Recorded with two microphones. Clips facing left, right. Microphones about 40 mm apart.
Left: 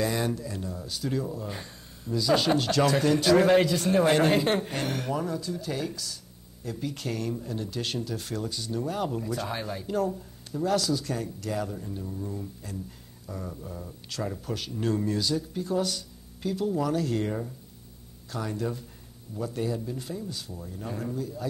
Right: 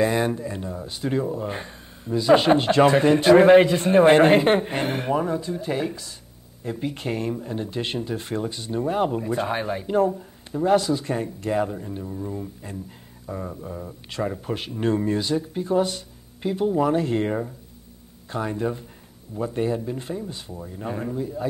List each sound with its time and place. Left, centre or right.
0.0 s speech: right